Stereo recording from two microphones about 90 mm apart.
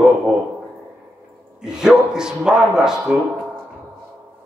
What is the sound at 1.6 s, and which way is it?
A man's voice, 5° right (ahead or behind).